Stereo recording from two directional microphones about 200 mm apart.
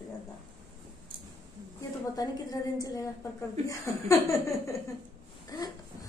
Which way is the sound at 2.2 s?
20° left (ahead or behind).